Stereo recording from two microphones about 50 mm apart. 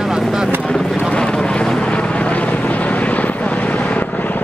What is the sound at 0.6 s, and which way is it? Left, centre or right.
Vehicle, centre.